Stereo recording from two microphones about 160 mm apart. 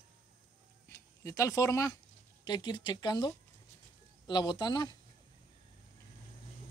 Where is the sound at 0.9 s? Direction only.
20° left (ahead or behind).